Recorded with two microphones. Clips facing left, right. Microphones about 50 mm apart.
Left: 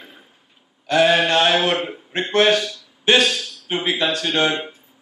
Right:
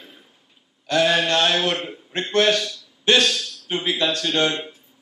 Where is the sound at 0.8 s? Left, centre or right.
Centre.